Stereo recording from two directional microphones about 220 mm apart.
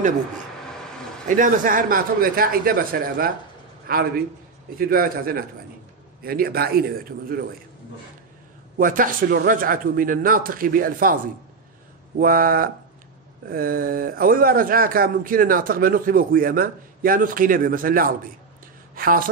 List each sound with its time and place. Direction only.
1.3 s a man's voice: 35° right (ahead or behind)
8.7 s speech: 40° right (ahead or behind)
12.2 s speech: 40° right (ahead or behind)